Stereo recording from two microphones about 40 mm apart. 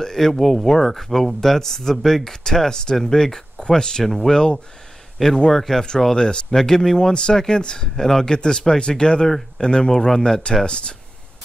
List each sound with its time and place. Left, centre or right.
0.0 s speech: centre
4.0 s speech: centre
6.1 s speech: left